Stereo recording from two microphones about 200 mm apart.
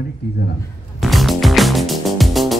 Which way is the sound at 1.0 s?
Centre (ahead or behind).